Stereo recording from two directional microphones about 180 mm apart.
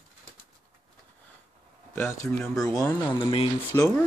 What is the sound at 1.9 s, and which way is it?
Speech, 15° left (ahead or behind).